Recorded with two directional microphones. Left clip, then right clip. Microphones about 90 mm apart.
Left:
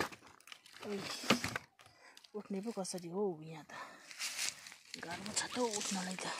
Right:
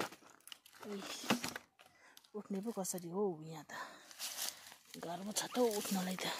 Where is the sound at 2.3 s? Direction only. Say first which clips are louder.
Left 1 dB; 10° left (ahead or behind).